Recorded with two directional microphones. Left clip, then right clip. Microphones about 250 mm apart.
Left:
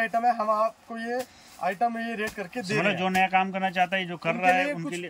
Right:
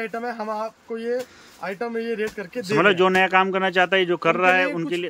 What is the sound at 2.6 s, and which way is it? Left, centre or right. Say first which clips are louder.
A man's voice: right 8 dB; centre.